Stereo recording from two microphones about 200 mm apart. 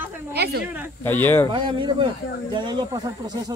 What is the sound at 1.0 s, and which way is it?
Speech, 10° left (ahead or behind).